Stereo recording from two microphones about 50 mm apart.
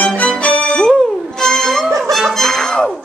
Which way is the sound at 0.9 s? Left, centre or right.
Centre.